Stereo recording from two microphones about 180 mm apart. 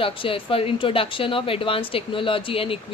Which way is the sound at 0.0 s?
30° left (ahead or behind).